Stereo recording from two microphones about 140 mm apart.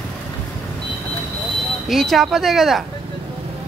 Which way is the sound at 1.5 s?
Centre (ahead or behind).